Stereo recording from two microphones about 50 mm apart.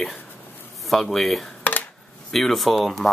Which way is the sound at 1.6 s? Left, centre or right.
Left.